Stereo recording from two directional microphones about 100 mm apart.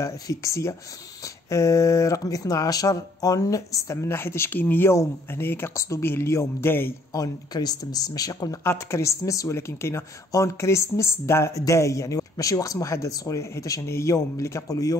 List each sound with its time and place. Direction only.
0.0 s speech: 30° left (ahead or behind)
7.1 s speech: 40° left (ahead or behind)
8.6 s speech: 25° left (ahead or behind)